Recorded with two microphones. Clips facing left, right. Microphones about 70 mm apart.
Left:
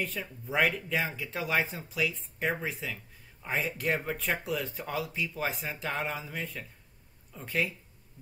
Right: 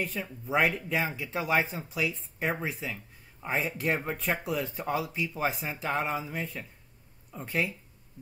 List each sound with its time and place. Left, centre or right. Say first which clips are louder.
0.0 s speech: right 2 dB; centre